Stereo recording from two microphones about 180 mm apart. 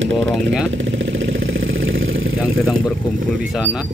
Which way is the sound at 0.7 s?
90° right.